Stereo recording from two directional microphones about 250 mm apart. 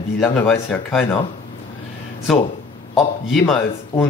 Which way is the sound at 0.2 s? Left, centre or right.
Centre.